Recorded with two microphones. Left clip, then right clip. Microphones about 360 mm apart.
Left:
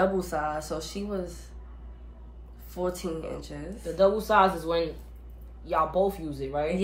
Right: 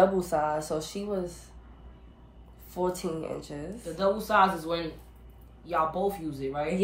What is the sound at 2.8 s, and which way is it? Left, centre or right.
Speech, centre.